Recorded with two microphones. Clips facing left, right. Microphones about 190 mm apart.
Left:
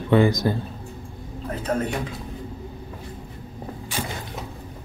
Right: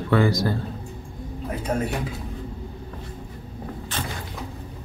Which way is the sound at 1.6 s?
10° right (ahead or behind).